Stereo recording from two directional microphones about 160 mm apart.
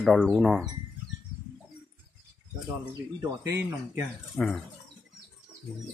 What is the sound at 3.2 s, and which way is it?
Speech, 15° right (ahead or behind).